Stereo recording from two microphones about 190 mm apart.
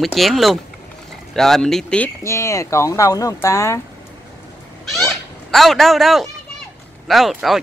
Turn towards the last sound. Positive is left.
turn(degrees=0)  # may be behind; listen again after turning